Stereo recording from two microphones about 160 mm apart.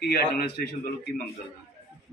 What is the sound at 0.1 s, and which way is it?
Speech, 75° left (ahead or behind).